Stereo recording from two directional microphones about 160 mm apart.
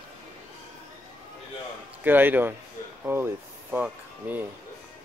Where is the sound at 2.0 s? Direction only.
10° right (ahead or behind).